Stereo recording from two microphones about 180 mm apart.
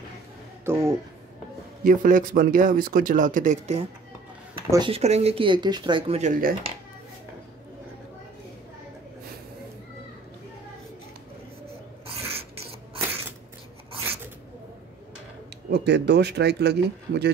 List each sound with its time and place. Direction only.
0.7 s speech: 15° right (ahead or behind)
1.9 s speech: 50° right (ahead or behind)
4.6 s speech: 25° right (ahead or behind); by 6.5 s 45° right (ahead or behind)
12.2 s filing: 35° right (ahead or behind)
15.7 s speech: 70° right (ahead or behind)